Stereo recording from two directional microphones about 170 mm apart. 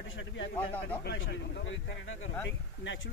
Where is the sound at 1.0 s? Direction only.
80° left.